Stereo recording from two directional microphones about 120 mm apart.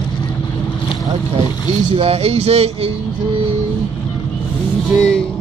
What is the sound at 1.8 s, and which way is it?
Speech, 50° right (ahead or behind).